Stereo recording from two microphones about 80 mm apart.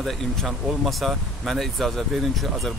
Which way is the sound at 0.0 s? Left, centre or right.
Centre.